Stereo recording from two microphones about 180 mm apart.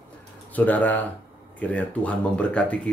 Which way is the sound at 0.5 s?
10° left (ahead or behind).